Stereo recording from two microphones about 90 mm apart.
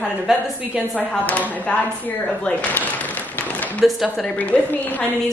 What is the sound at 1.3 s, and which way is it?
Speech, 15° left (ahead or behind).